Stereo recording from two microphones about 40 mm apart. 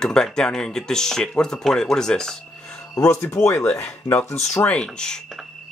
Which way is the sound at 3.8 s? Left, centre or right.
Left.